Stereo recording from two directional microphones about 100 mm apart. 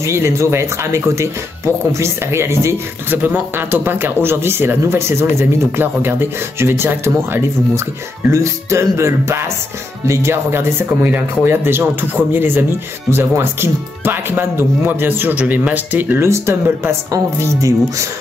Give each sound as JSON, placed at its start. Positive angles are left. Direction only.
{"t": 0.0, "sound": "speech", "side_deg": -30}